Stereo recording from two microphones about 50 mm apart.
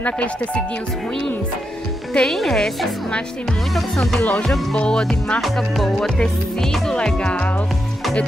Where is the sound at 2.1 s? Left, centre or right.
Centre.